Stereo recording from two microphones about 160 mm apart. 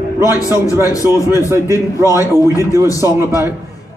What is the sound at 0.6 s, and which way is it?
Speech, 20° left (ahead or behind).